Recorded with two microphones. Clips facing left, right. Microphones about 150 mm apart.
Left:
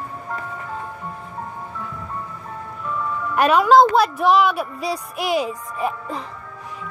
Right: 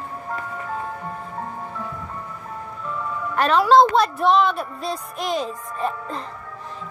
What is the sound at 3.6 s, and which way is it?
A woman's voice, 5° left (ahead or behind).